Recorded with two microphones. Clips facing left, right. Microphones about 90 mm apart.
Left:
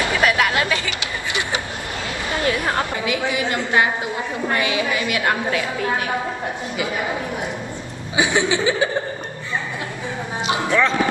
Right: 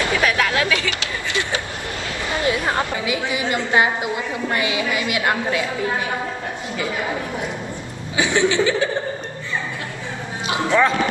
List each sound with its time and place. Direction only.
0.0 s vehicle: 20° left (ahead or behind)
2.4 s a woman's voice: 20° right (ahead or behind)
8.2 s speech: 15° left (ahead or behind)
10.5 s music: 20° right (ahead or behind)